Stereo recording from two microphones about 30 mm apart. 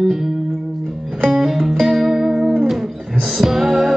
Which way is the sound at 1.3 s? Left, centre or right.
Centre.